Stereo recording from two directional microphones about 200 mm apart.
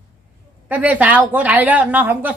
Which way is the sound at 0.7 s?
5° right (ahead or behind).